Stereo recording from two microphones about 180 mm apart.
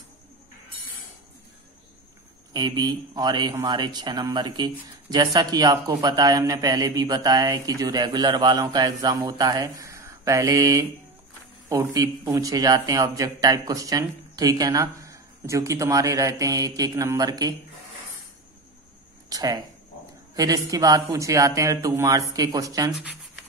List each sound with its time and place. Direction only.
2.5 s speech: 25° right (ahead or behind)
19.2 s speech: 20° right (ahead or behind)
22.9 s speech: 5° right (ahead or behind)